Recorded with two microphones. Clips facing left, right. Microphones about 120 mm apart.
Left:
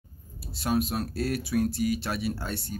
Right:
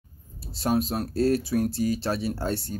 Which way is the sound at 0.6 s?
35° right (ahead or behind).